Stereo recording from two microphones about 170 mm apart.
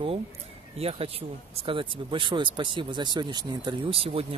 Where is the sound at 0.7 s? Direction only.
35° right (ahead or behind).